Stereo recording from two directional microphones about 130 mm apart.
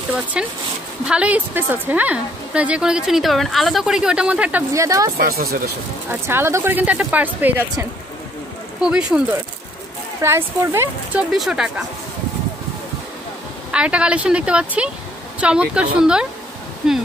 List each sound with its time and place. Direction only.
0.3 s a woman's voice: 5° right (ahead or behind)
4.7 s a woman's voice: 25° right (ahead or behind)
8.8 s a woman's voice: 5° right (ahead or behind)
10.2 s speech: 20° right (ahead or behind)
11.1 s speech: 5° right (ahead or behind)
13.7 s a woman's voice: 10° right (ahead or behind)